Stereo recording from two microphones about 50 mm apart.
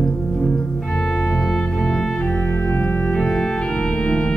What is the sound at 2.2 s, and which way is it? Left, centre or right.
Organ, centre.